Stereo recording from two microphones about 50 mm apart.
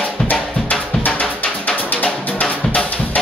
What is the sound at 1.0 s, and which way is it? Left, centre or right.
Drum, left.